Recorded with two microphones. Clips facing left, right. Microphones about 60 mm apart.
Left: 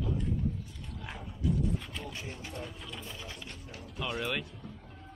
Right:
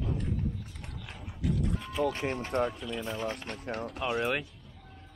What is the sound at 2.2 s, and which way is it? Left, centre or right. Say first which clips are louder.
Speech: right 12 dB; right.